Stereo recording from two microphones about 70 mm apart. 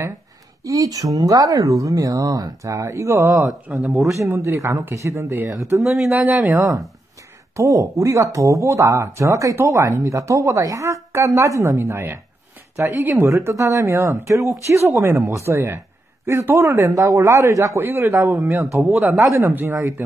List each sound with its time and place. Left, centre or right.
0.7 s speech: right
3.8 s speech: centre
4.4 s a man's voice: right
5.8 s speech: centre
6.5 s a man's voice: right
19.4 s speech: right